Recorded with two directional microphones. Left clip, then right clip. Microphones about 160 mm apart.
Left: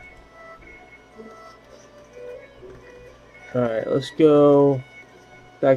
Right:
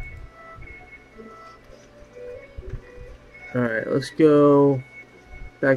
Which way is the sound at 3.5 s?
25° left (ahead or behind).